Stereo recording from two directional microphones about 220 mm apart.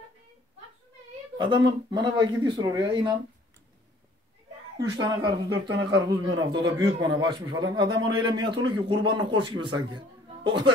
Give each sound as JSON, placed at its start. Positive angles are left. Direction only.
{"t": 1.4, "sound": "a man's voice", "side_deg": -20}
{"t": 4.7, "sound": "a man's voice", "side_deg": -15}